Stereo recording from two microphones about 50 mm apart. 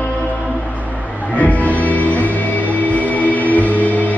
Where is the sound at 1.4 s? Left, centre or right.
Left.